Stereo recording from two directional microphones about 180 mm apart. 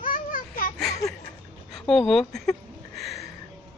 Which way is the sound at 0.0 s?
50° left (ahead or behind).